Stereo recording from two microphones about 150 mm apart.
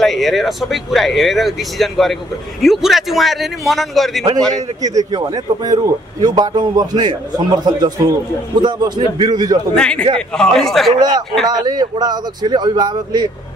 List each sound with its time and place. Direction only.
0.0 s speech: centre (ahead or behind)
4.8 s speech: 25° right (ahead or behind)
9.8 s a man's voice: 5° left (ahead or behind)
11.0 s speech: 30° right (ahead or behind)